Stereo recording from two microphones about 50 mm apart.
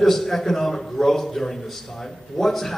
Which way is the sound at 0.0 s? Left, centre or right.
Centre.